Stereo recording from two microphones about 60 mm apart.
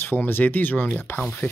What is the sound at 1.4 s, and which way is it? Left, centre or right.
Speech, left.